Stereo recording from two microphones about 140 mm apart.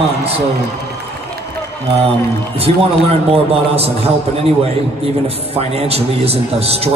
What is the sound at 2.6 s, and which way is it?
A man's voice, 45° right (ahead or behind).